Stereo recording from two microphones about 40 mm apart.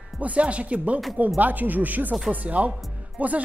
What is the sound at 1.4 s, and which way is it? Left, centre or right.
Speech, right.